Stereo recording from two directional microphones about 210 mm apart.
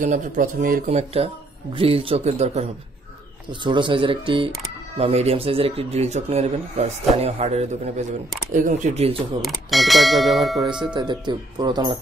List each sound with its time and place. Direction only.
0.0 s speech: 40° right (ahead or behind)
3.6 s speech: 20° right (ahead or behind)
9.4 s bell: centre (ahead or behind)
10.6 s speech: 20° right (ahead or behind)